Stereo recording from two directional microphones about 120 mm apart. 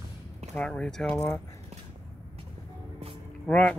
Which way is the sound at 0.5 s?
10° left (ahead or behind).